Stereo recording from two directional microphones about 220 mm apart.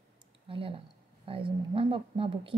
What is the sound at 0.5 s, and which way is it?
A woman's voice, 25° right (ahead or behind).